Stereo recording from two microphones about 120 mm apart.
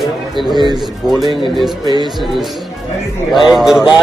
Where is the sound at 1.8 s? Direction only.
40° right (ahead or behind).